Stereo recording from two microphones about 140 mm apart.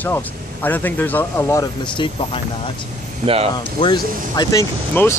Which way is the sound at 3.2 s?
45° right (ahead or behind).